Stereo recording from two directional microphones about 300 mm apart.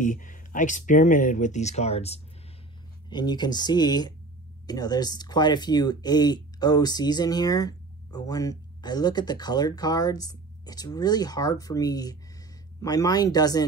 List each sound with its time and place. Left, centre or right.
0.0 s speech: left